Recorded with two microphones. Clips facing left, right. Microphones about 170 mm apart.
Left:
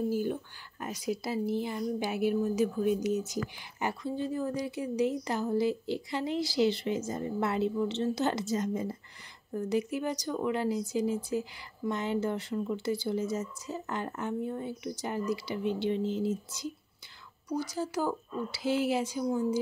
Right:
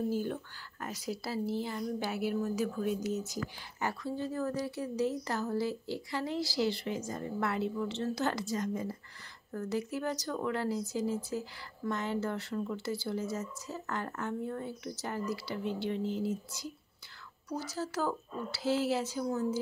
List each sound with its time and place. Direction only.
0.1 s a woman's voice: 10° left (ahead or behind)